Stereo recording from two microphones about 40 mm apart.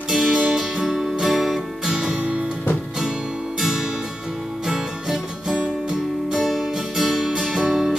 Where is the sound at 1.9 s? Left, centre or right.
Centre.